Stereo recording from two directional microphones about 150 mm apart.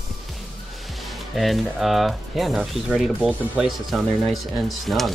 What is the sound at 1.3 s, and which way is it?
Speech, centre (ahead or behind).